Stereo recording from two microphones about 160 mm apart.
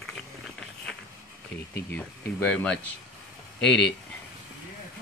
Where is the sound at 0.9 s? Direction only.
Centre (ahead or behind).